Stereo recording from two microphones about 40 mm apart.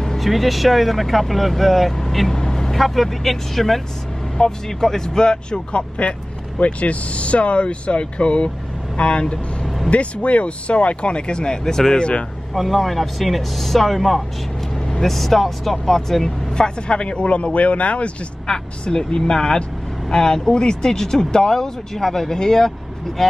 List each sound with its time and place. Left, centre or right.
0.2 s speech: centre
2.3 s speech: centre
12.5 s speech: centre
16.5 s speech: left
18.5 s speech: left